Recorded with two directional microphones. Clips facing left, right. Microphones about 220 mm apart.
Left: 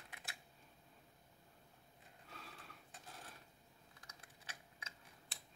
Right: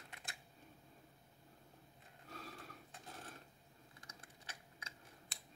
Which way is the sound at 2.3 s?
40° right (ahead or behind).